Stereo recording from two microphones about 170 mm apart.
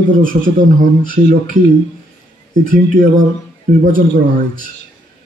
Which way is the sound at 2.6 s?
50° right (ahead or behind).